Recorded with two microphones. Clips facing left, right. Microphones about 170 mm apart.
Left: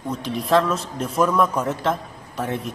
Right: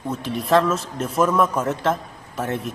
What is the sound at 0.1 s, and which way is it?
A man's voice, centre (ahead or behind).